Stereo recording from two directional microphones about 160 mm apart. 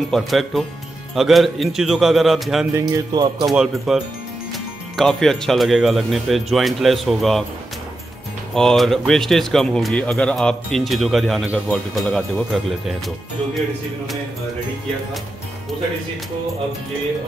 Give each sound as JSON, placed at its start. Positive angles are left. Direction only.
{"t": 0.1, "sound": "speech", "side_deg": 0}
{"t": 2.9, "sound": "speech", "side_deg": -25}
{"t": 3.4, "sound": "speech", "side_deg": 0}
{"t": 8.5, "sound": "speech", "side_deg": 5}